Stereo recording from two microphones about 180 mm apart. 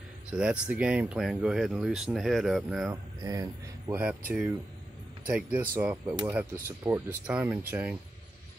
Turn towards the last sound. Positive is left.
turn(degrees=-10)  # may be behind; listen again after turning